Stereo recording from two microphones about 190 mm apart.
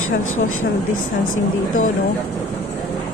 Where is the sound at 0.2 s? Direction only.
90° left.